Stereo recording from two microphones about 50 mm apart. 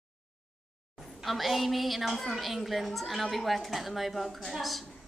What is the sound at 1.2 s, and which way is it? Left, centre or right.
A woman's voice, centre.